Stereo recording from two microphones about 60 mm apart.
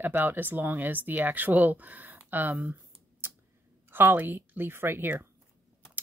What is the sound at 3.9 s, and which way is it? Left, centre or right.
Speech, right.